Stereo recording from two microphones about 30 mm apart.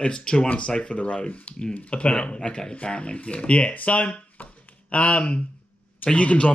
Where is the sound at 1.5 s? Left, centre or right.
Left.